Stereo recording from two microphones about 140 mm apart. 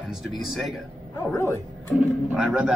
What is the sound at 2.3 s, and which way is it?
Speech, 5° right (ahead or behind).